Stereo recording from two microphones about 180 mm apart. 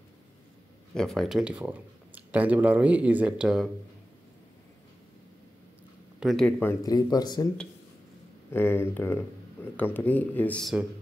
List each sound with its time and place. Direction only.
0.9 s speech: centre (ahead or behind)
6.1 s speech: centre (ahead or behind); by 7.4 s 20° left (ahead or behind)
8.5 s speech: 10° left (ahead or behind)